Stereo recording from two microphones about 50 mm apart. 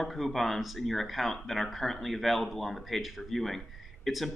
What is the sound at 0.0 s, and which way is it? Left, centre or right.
Speech, centre.